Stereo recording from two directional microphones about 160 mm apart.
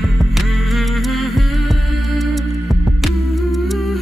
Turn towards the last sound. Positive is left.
turn(degrees=0)  # may be behind; listen again after turning